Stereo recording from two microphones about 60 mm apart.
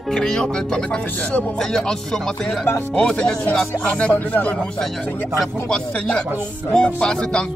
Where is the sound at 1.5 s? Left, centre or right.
Centre.